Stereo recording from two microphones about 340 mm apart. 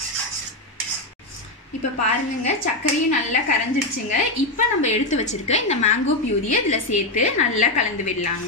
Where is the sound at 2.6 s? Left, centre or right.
Left.